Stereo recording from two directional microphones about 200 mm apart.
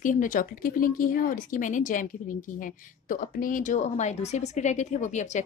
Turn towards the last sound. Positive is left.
turn(degrees=35)  # may be behind; listen again after turning